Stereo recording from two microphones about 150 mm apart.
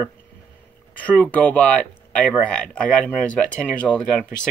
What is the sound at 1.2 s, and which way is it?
Speech, 10° left (ahead or behind).